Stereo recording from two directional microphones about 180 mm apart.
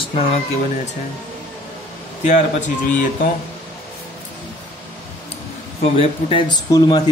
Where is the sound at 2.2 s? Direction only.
45° left (ahead or behind).